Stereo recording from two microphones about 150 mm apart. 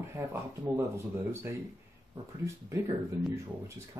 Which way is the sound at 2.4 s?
20° right (ahead or behind).